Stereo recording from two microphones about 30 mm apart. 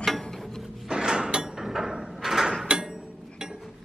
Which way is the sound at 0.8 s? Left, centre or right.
Right.